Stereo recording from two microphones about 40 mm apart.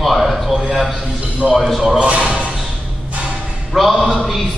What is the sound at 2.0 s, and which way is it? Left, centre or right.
Speech, right.